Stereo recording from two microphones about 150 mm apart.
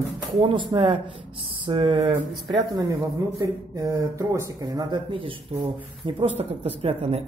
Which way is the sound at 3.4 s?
20° right (ahead or behind).